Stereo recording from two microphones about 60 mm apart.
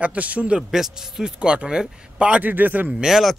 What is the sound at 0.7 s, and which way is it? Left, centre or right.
Speech, centre.